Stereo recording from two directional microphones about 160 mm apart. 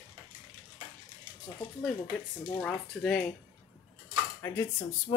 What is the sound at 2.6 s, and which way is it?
Speech, 5° left (ahead or behind).